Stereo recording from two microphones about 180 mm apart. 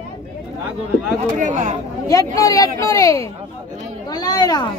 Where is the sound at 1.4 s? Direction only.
40° right (ahead or behind).